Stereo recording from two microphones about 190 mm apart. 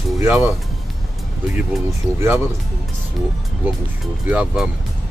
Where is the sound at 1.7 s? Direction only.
Centre (ahead or behind).